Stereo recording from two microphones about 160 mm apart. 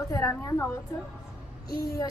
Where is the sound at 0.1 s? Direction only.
20° left (ahead or behind).